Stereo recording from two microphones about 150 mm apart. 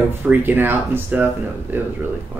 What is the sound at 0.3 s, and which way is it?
Speech, 15° right (ahead or behind).